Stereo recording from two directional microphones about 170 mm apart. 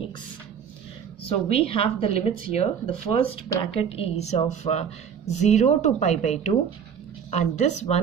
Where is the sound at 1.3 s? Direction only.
35° left (ahead or behind).